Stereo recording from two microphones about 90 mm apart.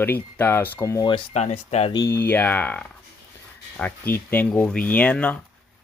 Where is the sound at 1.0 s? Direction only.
60° left (ahead or behind).